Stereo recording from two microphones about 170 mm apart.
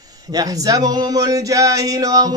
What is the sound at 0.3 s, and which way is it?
Speech, 20° right (ahead or behind).